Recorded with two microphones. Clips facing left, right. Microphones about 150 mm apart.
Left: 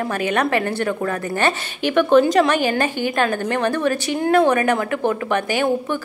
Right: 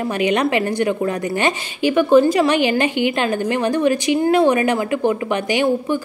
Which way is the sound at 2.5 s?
45° left (ahead or behind).